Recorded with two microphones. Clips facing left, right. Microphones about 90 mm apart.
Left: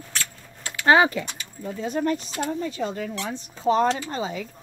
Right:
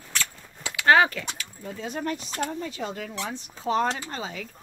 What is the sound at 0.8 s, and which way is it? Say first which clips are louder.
Speech: left 2 dB; 15° left (ahead or behind).